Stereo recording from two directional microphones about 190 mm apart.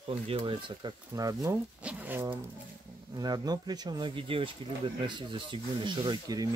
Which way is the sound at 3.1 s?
20° right (ahead or behind).